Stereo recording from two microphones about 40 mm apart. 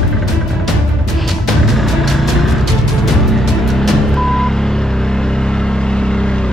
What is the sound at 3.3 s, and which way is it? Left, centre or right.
Vehicle, centre.